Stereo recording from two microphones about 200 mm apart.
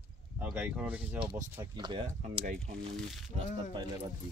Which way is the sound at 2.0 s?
40° right (ahead or behind).